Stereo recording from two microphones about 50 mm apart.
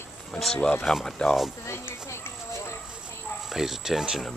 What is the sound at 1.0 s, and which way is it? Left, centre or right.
Speech, centre.